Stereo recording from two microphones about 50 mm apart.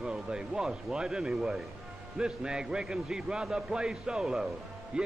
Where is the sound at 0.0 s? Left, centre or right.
Centre.